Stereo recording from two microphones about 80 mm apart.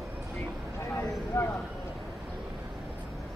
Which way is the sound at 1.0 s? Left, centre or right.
Left.